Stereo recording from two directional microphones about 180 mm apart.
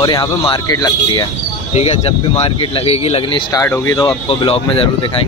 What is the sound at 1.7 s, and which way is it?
Speech, 35° left (ahead or behind).